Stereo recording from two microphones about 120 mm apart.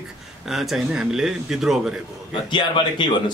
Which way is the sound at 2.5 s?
40° left (ahead or behind).